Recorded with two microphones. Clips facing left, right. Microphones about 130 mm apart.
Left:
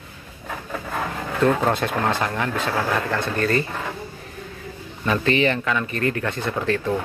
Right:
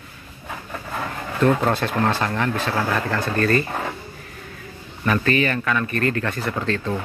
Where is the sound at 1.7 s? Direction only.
15° left (ahead or behind).